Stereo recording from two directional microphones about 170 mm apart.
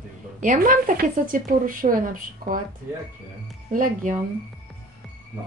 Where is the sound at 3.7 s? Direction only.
55° right (ahead or behind).